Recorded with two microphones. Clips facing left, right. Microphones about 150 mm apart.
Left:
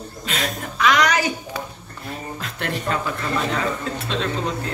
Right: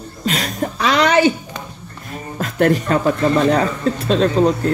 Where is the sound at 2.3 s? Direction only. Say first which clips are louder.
Right 15 dB; 45° right (ahead or behind).